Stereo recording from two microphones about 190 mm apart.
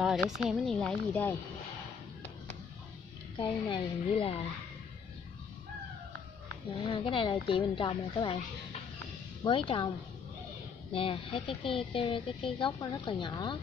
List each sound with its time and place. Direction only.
0.0 s speech: centre (ahead or behind)
3.3 s a woman's voice: 25° left (ahead or behind)
6.7 s a woman's voice: 30° left (ahead or behind)
9.4 s a woman's voice: 25° left (ahead or behind)